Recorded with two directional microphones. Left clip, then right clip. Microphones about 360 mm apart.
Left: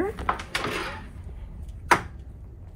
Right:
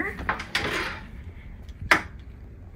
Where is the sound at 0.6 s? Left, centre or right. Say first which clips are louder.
Right 2 dB; centre.